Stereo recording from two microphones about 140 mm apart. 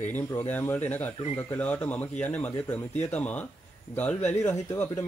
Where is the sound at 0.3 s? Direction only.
15° left (ahead or behind).